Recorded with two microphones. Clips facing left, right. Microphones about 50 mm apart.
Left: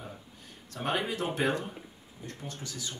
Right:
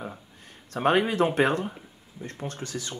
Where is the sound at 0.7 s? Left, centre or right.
Right.